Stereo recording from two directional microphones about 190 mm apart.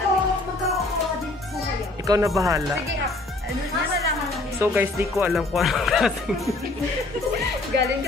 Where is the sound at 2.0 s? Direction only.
15° right (ahead or behind).